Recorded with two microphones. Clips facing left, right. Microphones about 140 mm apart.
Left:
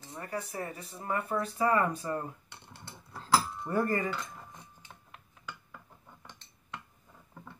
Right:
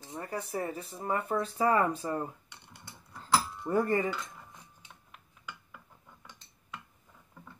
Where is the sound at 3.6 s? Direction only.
25° right (ahead or behind).